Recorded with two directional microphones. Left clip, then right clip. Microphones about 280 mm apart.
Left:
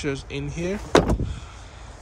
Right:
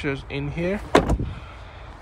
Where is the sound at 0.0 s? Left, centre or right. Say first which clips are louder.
Right 1 dB; centre.